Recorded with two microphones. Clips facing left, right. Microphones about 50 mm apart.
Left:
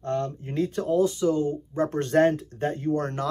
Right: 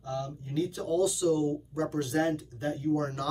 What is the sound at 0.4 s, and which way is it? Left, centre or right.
Speech, left.